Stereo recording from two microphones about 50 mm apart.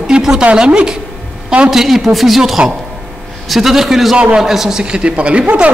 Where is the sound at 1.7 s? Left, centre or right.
Centre.